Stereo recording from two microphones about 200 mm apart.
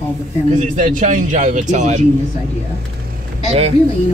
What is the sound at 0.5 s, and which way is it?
A man's voice, 40° right (ahead or behind).